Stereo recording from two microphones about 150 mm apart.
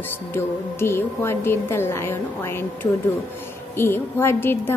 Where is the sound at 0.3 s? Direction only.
15° left (ahead or behind).